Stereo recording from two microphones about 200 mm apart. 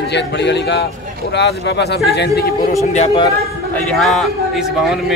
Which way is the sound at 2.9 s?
30° left (ahead or behind).